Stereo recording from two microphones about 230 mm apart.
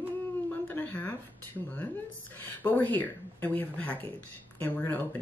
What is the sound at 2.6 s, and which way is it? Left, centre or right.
Speech, centre.